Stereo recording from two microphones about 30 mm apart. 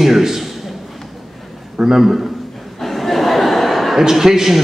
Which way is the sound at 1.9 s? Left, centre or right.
Centre.